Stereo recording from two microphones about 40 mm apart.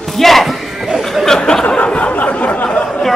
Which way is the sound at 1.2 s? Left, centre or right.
Centre.